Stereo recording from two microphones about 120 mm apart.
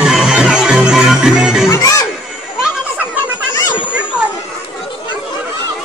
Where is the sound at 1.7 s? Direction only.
30° left (ahead or behind).